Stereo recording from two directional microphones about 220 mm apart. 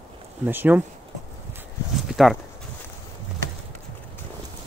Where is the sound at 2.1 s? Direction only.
Centre (ahead or behind).